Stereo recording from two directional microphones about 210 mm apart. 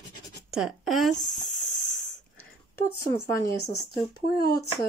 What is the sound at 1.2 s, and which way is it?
Speech, 20° left (ahead or behind).